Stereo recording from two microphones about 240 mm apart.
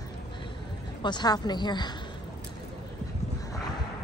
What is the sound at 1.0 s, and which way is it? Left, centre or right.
Speech, centre.